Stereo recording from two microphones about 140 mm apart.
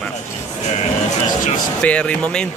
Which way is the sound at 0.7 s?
55° left (ahead or behind).